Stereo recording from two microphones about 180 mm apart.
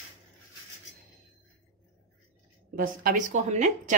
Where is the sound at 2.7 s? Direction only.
50° right (ahead or behind).